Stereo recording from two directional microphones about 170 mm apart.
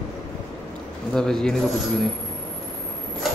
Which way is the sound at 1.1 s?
5° left (ahead or behind).